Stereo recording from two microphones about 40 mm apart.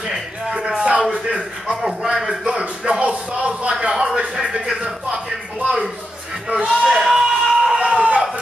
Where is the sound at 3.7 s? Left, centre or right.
Centre.